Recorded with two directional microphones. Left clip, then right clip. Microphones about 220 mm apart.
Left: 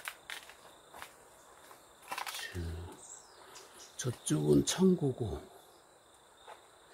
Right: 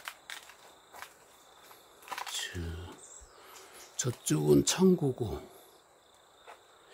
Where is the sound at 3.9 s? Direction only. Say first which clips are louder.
Right 3 dB; 25° right (ahead or behind).